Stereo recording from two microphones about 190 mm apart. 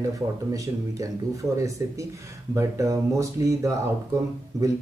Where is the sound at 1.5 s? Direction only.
15° right (ahead or behind).